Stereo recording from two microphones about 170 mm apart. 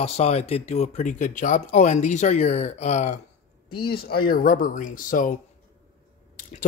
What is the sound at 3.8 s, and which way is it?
Speech, 65° left (ahead or behind).